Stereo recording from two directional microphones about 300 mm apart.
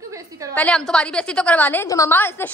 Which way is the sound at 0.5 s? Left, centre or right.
Centre.